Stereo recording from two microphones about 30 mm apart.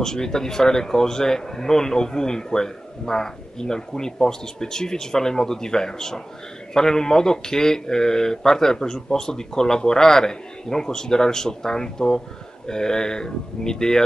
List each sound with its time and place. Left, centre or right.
0.0 s a man's voice: left